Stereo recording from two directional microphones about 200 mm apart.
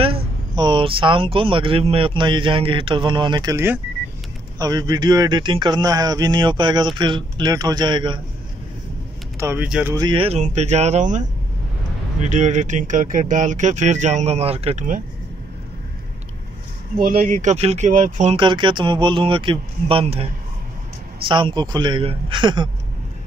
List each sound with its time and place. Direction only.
0.6 s speech: 25° right (ahead or behind)
9.4 s speech: 10° right (ahead or behind)
9.9 s speech: 25° right (ahead or behind)
17.0 s speech: 45° right (ahead or behind)
18.4 s speech: 25° right (ahead or behind)